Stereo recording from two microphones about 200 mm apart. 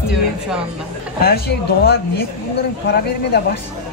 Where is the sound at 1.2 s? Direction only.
50° left (ahead or behind).